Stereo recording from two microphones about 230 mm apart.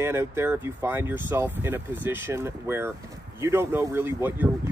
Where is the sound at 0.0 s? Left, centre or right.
Centre.